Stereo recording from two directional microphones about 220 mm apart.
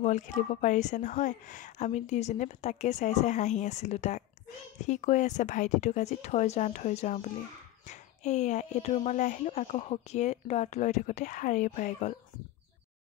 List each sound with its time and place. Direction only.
0.0 s speech: 35° left (ahead or behind)